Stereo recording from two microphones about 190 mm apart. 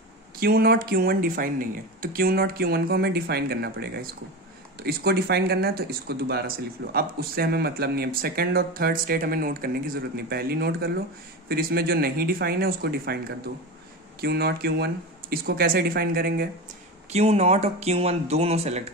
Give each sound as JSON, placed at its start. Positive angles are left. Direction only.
{"t": 0.4, "sound": "speech", "side_deg": -55}
{"t": 14.2, "sound": "speech", "side_deg": -55}
{"t": 17.1, "sound": "speech", "side_deg": -35}